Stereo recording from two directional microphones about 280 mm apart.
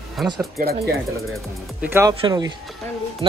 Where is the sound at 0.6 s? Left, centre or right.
Right.